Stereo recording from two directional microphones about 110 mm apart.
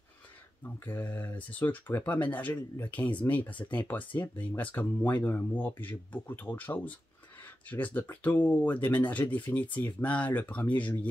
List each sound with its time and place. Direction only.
0.7 s speech: 15° left (ahead or behind)